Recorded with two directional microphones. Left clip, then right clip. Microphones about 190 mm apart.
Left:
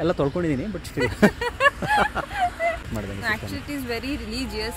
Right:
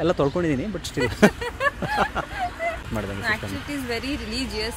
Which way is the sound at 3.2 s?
Centre (ahead or behind).